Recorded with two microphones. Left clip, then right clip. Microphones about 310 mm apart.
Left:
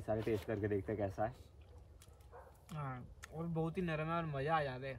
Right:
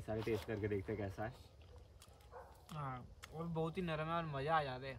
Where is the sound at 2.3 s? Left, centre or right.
Right.